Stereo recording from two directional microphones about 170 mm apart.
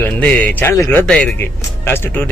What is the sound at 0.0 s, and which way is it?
Speech, 10° left (ahead or behind).